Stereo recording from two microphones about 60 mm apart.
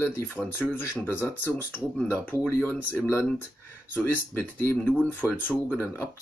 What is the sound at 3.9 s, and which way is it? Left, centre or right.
Speech, left.